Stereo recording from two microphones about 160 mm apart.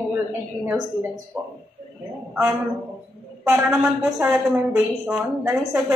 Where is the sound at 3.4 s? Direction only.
15° right (ahead or behind).